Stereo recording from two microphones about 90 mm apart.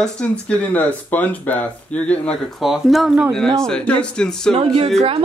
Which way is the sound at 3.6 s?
10° left (ahead or behind).